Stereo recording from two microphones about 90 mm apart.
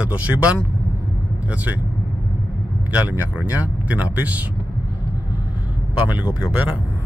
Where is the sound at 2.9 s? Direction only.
20° right (ahead or behind).